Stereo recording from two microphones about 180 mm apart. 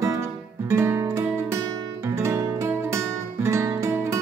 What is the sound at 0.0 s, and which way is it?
Guitar, 15° right (ahead or behind).